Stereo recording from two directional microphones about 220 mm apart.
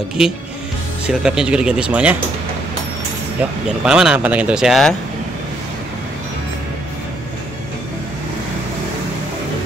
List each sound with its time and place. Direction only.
1.0 s speech: 5° right (ahead or behind)
3.6 s speech: 5° right (ahead or behind)